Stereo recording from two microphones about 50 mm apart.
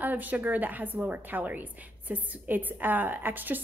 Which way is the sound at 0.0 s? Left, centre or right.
Right.